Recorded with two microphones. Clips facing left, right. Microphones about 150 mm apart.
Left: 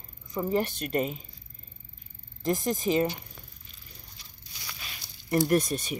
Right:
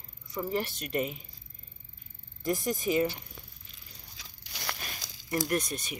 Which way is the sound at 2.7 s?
35° left (ahead or behind).